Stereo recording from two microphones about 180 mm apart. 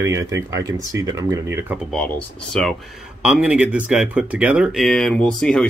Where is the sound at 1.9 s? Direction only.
5° left (ahead or behind).